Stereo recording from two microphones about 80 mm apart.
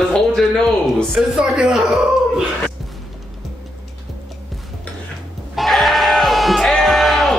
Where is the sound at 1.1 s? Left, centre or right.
Centre.